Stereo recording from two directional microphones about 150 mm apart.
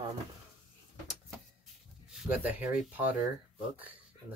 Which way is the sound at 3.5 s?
10° right (ahead or behind).